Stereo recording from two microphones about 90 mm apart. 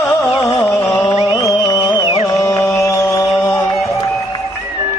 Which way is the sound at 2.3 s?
35° left (ahead or behind).